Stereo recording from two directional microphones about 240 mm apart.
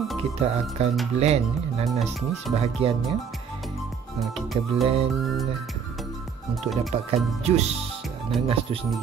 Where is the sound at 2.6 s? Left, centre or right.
Right.